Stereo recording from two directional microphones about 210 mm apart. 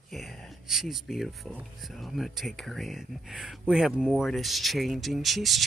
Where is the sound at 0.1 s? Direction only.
Centre (ahead or behind).